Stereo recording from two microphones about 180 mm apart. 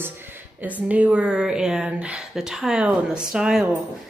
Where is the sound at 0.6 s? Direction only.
10° right (ahead or behind).